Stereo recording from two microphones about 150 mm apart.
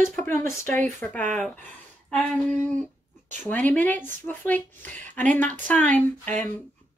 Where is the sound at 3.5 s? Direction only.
10° left (ahead or behind).